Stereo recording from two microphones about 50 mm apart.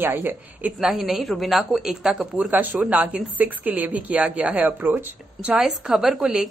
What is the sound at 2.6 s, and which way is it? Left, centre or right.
Speech, right.